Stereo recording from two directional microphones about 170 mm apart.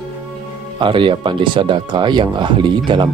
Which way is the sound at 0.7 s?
30° right (ahead or behind).